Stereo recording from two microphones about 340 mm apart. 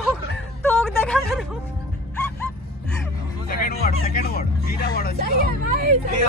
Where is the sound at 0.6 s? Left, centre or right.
Centre.